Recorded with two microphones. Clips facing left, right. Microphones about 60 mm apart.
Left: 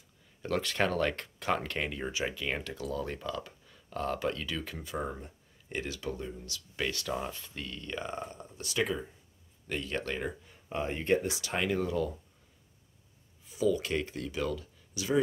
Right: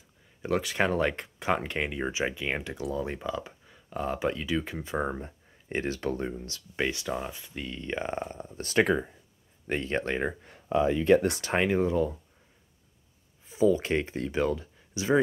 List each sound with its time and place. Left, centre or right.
0.4 s speech: centre; by 6.3 s right
6.3 s speech: right
6.9 s speech: centre
11.3 s speech: right
13.5 s speech: right